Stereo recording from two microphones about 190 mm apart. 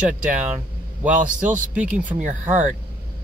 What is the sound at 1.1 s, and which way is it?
Speech, 40° right (ahead or behind).